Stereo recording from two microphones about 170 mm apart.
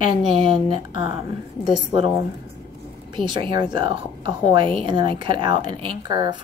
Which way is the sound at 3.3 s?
25° right (ahead or behind).